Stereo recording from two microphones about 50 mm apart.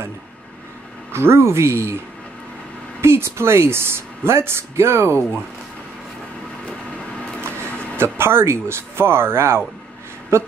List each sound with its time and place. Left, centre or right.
1.1 s speech: right
3.0 s speech: right
7.7 s a sound: left
8.0 s speech: right